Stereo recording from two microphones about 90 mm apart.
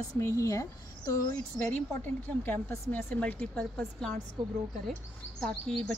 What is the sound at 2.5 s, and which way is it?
A woman's voice, 25° left (ahead or behind).